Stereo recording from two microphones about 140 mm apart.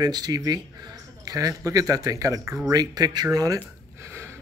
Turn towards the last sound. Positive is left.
turn(degrees=-15)  # may be behind; listen again after turning